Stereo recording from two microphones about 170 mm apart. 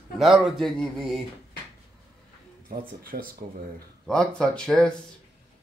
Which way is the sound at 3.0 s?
55° right (ahead or behind).